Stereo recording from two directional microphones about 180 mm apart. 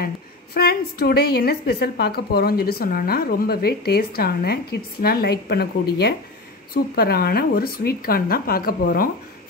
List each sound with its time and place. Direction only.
0.6 s a woman's voice: 60° left (ahead or behind)